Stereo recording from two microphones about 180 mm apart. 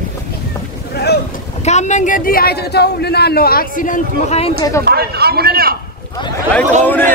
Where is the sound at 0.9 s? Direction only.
65° left (ahead or behind).